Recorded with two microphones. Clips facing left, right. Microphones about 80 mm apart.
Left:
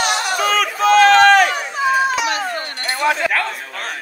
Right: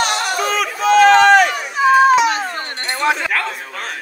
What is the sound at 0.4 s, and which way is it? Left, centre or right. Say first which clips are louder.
Chatter: left 2 dB; left.